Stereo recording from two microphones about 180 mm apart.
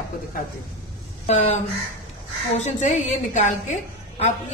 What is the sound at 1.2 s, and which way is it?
Speech, 40° left (ahead or behind).